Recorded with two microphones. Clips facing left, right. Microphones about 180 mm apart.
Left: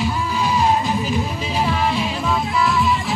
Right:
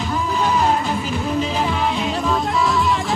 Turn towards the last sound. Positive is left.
turn(degrees=0)  # may be behind; listen again after turning